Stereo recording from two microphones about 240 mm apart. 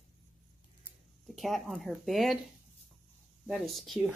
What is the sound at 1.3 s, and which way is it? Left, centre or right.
Speech, centre.